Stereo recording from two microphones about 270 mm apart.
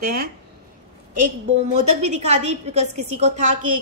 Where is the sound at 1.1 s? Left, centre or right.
Right.